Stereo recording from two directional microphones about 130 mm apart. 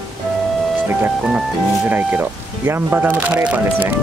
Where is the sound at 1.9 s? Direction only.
15° right (ahead or behind).